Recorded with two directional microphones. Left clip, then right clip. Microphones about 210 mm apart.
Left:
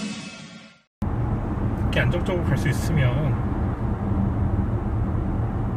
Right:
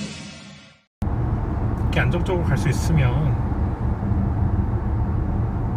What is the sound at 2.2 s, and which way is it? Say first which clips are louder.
Speech: right 1 dB; 30° left (ahead or behind).